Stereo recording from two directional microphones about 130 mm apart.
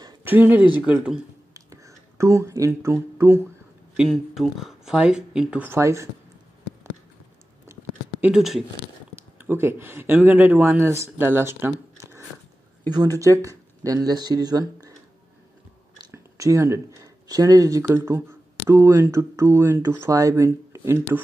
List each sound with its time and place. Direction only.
0.2 s speech: 15° right (ahead or behind)
1.5 s a sound: 25° right (ahead or behind)
3.9 s speech: 5° right (ahead or behind); by 6.0 s 20° right (ahead or behind)
8.2 s speech: 5° right (ahead or behind)
9.1 s speech: 20° right (ahead or behind)
12.9 s speech: 30° right (ahead or behind)
16.0 s a sound: 25° right (ahead or behind)
17.9 s speech: 20° right (ahead or behind)